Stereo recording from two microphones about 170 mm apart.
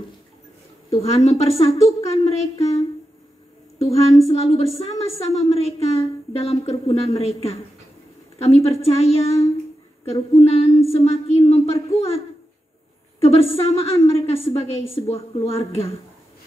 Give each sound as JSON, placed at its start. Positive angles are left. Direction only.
{"t": 1.0, "sound": "a woman's voice", "side_deg": 35}
{"t": 3.8, "sound": "a woman's voice", "side_deg": 35}
{"t": 13.2, "sound": "a woman's voice", "side_deg": 35}